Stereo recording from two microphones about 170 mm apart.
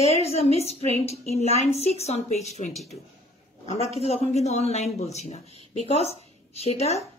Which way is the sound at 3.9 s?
40° left (ahead or behind).